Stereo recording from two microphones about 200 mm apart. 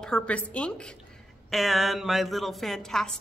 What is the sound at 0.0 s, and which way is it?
Speech, 5° left (ahead or behind).